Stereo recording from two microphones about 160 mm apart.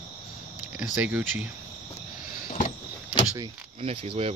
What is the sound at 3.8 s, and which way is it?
Speech, 35° right (ahead or behind).